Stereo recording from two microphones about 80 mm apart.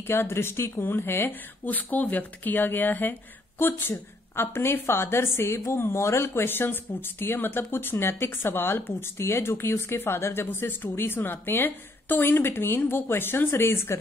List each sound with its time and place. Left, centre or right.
0.0 s speech: left